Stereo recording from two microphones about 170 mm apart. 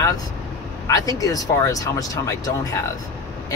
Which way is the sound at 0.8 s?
20° left (ahead or behind).